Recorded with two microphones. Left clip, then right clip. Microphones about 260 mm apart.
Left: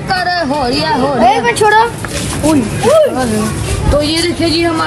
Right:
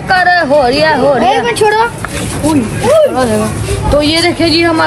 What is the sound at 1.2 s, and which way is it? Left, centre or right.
Speech, left.